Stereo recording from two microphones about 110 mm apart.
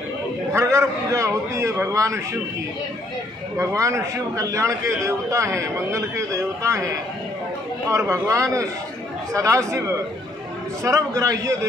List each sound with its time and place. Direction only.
0.5 s a man's voice: 25° right (ahead or behind)
3.5 s a man's voice: 30° right (ahead or behind)